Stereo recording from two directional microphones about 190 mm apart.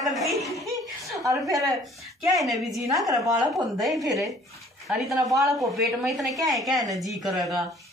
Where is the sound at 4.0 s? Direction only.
15° right (ahead or behind).